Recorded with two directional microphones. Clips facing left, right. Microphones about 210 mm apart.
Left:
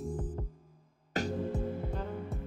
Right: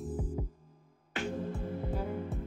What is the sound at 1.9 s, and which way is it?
Music, 5° right (ahead or behind).